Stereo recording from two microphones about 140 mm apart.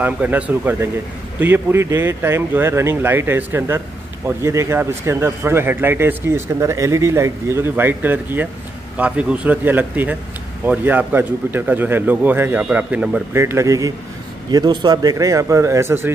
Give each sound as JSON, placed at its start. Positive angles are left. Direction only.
{"t": 0.0, "sound": "a man's voice", "side_deg": -10}
{"t": 13.4, "sound": "speech", "side_deg": -20}